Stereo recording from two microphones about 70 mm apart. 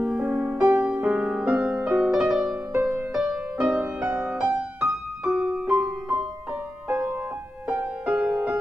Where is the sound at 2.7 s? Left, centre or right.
Right.